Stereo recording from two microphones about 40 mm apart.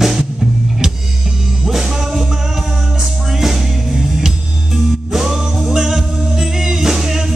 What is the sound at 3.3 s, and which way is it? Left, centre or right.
Music, centre.